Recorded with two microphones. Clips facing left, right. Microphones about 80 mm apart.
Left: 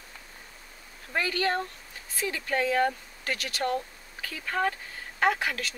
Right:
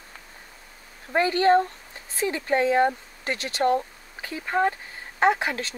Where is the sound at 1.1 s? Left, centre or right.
Right.